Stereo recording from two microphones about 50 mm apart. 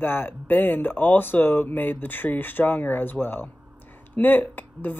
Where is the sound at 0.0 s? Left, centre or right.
Left.